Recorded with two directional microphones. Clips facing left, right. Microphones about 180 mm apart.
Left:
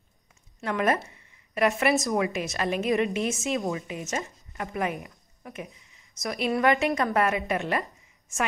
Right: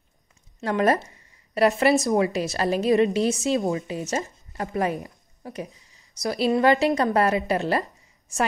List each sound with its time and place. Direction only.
0.7 s a woman's voice: 35° right (ahead or behind)